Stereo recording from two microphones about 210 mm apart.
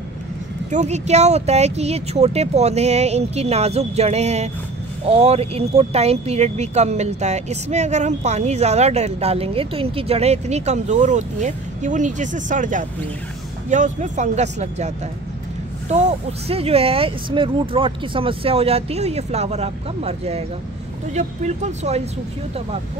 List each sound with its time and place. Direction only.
0.7 s speech: 35° right (ahead or behind)
15.9 s speech: 35° right (ahead or behind)